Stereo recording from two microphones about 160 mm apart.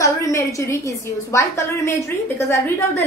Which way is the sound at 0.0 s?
20° left (ahead or behind).